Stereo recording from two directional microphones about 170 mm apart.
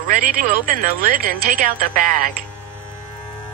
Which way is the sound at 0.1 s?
55° right (ahead or behind).